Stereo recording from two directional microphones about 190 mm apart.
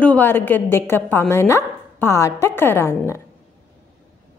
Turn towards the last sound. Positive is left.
turn(degrees=15)  # may be behind; listen again after turning